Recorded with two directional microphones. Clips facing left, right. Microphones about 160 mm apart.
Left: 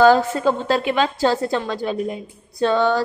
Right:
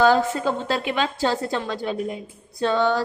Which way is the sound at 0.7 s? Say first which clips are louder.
Left 5 dB; 45° left (ahead or behind).